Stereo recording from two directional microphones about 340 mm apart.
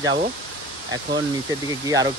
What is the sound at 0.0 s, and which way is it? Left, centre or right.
Speech, centre.